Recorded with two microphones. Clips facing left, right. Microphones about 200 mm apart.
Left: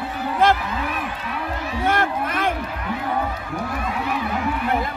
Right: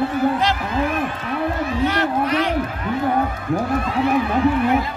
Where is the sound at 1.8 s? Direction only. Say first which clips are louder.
Right 1 dB; 50° left (ahead or behind).